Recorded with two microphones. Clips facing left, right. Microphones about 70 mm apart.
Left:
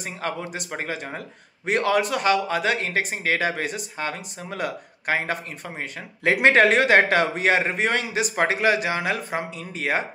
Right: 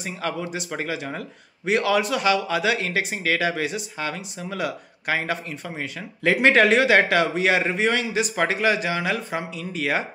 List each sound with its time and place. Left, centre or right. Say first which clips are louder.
0.0 s a man's voice: right 1 dB; left